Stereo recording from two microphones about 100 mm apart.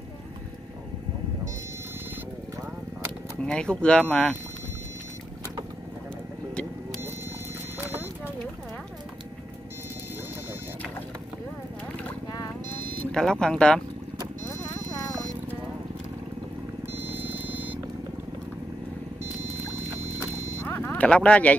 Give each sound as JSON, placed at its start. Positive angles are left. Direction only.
{"t": 3.3, "sound": "speech", "side_deg": 10}
{"t": 13.1, "sound": "a sound", "side_deg": 5}
{"t": 14.5, "sound": "horse", "side_deg": 35}
{"t": 16.9, "sound": "vehicle", "side_deg": -20}
{"t": 20.2, "sound": "clip-clop", "side_deg": -25}
{"t": 20.6, "sound": "a sound", "side_deg": 20}